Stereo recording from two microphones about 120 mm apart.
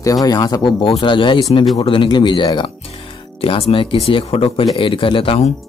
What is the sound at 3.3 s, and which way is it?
Speech, 50° left (ahead or behind).